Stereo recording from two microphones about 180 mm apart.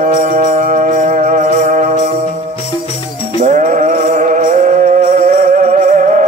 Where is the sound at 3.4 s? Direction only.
45° right (ahead or behind).